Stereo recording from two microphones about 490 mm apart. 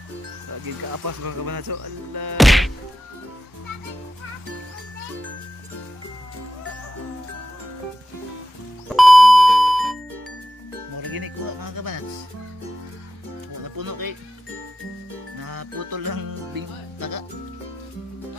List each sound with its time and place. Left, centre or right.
0.5 s speech: right
2.3 s whack: centre
8.8 s music: centre
11.0 s speech: right
13.7 s speech: right
15.4 s music: right